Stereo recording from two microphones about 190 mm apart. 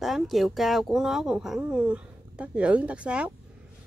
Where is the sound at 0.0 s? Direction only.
Centre (ahead or behind).